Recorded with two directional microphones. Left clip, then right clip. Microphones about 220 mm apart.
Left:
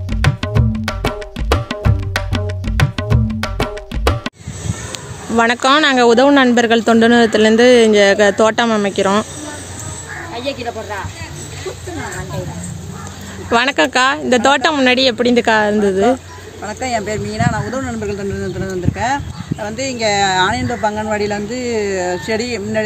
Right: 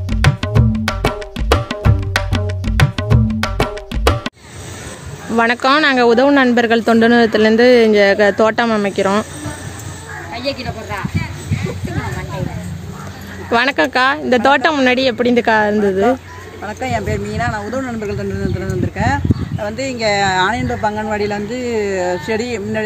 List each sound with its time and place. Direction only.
0.1 s music: centre (ahead or behind)
5.3 s speech: centre (ahead or behind)
10.3 s speech: 50° right (ahead or behind)
13.5 s speech: 5° left (ahead or behind)